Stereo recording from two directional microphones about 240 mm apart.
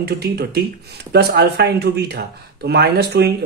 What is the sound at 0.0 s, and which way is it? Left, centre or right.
Speech, right.